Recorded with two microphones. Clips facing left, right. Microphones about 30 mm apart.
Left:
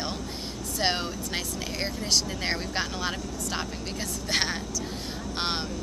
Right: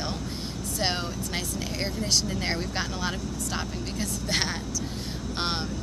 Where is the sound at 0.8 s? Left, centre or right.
Centre.